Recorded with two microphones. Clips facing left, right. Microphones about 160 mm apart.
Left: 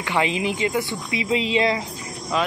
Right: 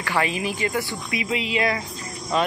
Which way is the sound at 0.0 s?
20° left (ahead or behind).